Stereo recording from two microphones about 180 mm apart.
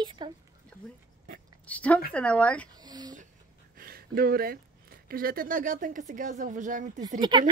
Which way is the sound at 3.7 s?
55° right (ahead or behind).